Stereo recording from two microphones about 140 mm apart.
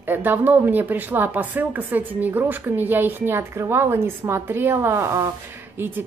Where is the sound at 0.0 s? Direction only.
15° right (ahead or behind).